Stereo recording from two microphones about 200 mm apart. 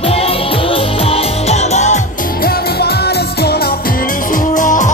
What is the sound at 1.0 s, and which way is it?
Music, 35° left (ahead or behind).